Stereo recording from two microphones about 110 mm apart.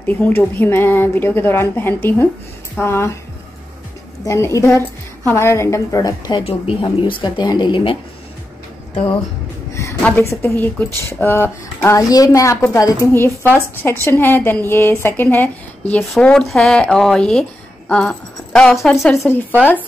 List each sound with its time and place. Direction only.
0.0 s speech: 15° left (ahead or behind)
4.2 s speech: 30° left (ahead or behind)
6.4 s speech: 50° left (ahead or behind)
10.4 s speech: 15° left (ahead or behind)
16.0 s a woman's voice: centre (ahead or behind)
19.1 s speech: 20° left (ahead or behind)